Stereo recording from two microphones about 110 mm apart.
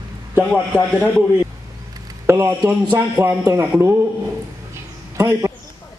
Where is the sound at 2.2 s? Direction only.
25° right (ahead or behind).